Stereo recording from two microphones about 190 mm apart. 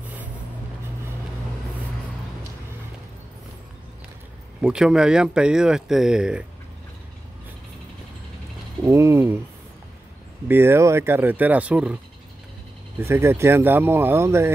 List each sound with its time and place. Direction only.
4.6 s speech: 5° right (ahead or behind)
8.8 s speech: 15° right (ahead or behind)
10.5 s speech: 15° right (ahead or behind)
13.0 s speech: 10° right (ahead or behind)